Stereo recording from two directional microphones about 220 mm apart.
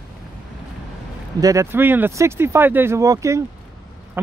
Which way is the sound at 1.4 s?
15° right (ahead or behind).